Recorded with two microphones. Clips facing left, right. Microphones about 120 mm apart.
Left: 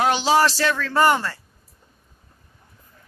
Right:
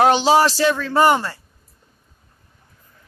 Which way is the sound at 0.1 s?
25° right (ahead or behind).